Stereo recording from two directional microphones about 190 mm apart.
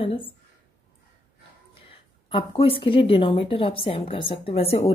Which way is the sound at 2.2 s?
30° left (ahead or behind).